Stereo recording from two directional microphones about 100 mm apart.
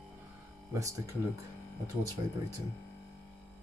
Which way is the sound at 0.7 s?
35° right (ahead or behind).